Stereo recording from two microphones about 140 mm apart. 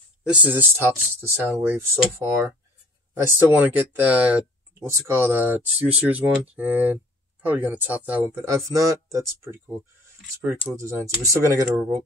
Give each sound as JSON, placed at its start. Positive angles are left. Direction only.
{"t": 0.3, "sound": "speech", "side_deg": -10}
{"t": 8.5, "sound": "speech", "side_deg": -20}
{"t": 10.4, "sound": "speech", "side_deg": -10}
{"t": 10.8, "sound": "speech", "side_deg": -20}